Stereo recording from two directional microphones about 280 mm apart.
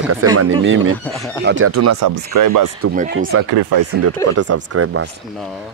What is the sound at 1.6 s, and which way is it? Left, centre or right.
Speech, right.